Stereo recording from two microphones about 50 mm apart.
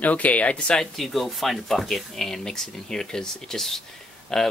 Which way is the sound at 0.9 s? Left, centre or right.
Centre.